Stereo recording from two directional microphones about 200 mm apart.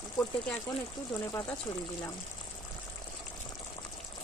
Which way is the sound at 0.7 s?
15° left (ahead or behind).